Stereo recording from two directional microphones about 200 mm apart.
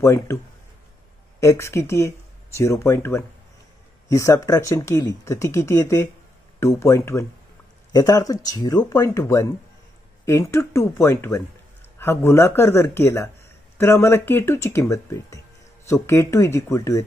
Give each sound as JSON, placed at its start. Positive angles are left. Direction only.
{"t": 0.0, "sound": "speech", "side_deg": 15}
{"t": 1.4, "sound": "speech", "side_deg": 15}